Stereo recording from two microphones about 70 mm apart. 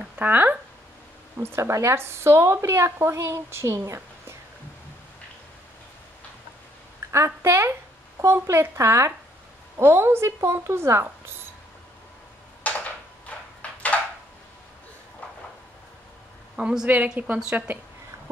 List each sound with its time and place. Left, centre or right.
0.0 s speech: right
1.4 s a woman's voice: right
7.1 s a woman's voice: right
12.6 s a sound: left
16.5 s a woman's voice: centre